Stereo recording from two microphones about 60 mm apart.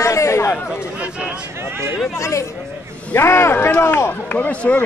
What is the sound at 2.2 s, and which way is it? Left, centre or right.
Speech, left.